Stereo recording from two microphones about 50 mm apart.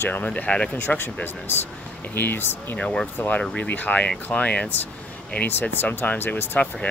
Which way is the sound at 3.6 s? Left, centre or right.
Left.